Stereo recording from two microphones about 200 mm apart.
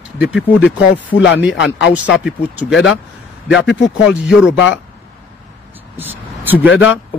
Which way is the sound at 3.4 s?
65° left (ahead or behind).